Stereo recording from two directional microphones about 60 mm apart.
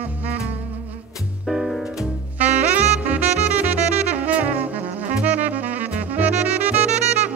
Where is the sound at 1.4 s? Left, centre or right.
Centre.